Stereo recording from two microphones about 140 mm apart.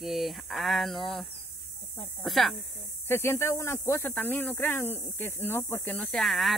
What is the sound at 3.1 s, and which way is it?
Speech, 15° left (ahead or behind).